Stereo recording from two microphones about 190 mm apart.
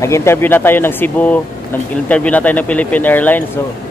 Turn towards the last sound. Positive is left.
turn(degrees=10)  # may be behind; listen again after turning